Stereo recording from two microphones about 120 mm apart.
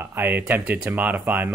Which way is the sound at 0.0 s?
20° right (ahead or behind).